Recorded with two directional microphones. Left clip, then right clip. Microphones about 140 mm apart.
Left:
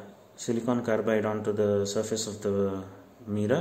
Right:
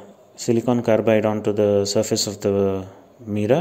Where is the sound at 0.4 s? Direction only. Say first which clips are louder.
Right 9 dB; 50° right (ahead or behind).